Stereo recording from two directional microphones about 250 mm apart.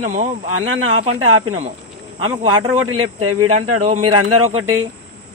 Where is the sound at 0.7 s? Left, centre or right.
Right.